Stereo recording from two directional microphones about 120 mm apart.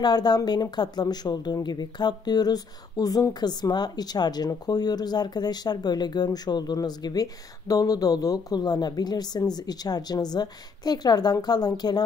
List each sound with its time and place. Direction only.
0.0 s speech: 35° left (ahead or behind)